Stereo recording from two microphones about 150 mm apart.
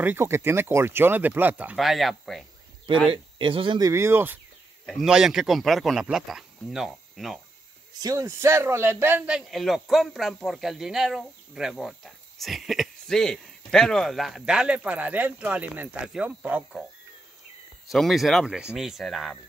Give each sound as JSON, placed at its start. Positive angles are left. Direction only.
{"t": 0.0, "sound": "speech", "side_deg": -15}
{"t": 3.1, "sound": "speech", "side_deg": -35}
{"t": 3.8, "sound": "speech", "side_deg": -20}
{"t": 4.8, "sound": "a man's voice", "side_deg": 0}
{"t": 8.0, "sound": "a man's voice", "side_deg": -20}
{"t": 17.9, "sound": "a man's voice", "side_deg": 0}